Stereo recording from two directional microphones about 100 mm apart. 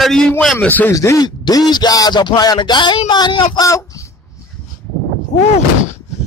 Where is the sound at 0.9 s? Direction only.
35° left (ahead or behind).